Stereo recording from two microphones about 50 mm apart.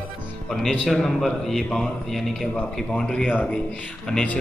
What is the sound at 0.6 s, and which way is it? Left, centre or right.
A man's voice, centre.